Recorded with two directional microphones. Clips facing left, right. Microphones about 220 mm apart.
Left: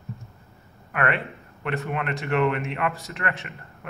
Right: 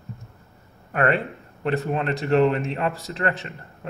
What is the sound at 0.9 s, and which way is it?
A man's voice, 35° right (ahead or behind).